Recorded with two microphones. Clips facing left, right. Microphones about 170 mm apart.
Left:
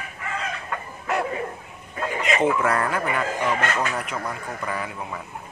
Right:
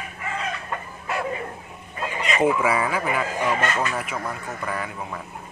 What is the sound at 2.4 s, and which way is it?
Speech, 5° right (ahead or behind).